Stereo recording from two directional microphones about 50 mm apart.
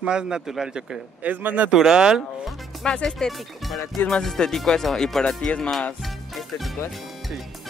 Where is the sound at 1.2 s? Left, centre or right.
Right.